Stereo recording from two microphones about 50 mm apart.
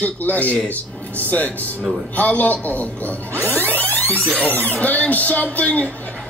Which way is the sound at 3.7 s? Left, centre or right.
Left.